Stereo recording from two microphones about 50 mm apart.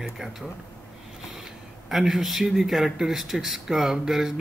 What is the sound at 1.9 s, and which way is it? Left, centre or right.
Speech, centre.